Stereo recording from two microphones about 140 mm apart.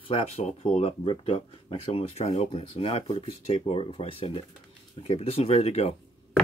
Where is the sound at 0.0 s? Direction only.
45° left (ahead or behind).